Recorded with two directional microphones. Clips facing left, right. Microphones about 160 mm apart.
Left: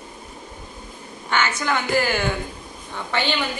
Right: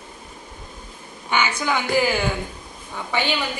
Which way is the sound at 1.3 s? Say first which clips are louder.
Even; 10° right (ahead or behind).